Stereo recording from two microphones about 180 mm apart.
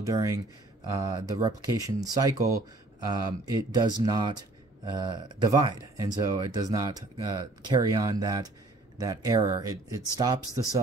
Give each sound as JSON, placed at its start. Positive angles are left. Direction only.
{"t": 0.0, "sound": "speech", "side_deg": -15}
{"t": 3.4, "sound": "speech", "side_deg": -25}